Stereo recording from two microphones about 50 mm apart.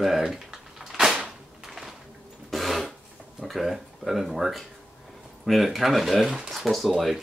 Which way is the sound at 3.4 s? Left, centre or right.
Centre.